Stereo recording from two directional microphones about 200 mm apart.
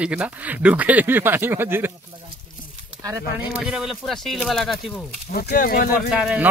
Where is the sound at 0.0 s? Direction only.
5° right (ahead or behind).